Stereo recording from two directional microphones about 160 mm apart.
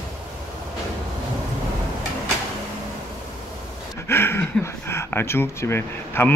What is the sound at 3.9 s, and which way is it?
Speech, 15° left (ahead or behind).